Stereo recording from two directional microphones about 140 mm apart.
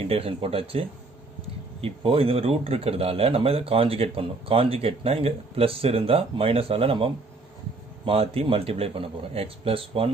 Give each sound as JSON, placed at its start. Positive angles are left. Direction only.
{"t": 0.0, "sound": "speech", "side_deg": -45}